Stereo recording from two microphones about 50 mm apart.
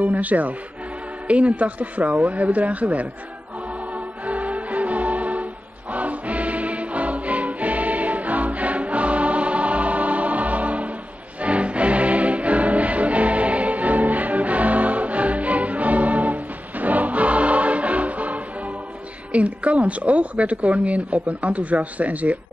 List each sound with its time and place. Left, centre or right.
0.0 s a woman's voice: right
3.9 s music: right
19.3 s a woman's voice: right